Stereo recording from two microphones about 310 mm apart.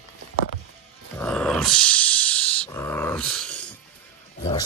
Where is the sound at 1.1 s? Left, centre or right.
Centre.